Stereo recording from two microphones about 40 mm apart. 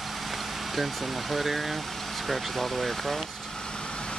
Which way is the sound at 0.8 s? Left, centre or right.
Centre.